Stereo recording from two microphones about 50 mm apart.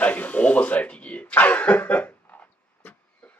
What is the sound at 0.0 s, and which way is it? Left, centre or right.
Cough, left.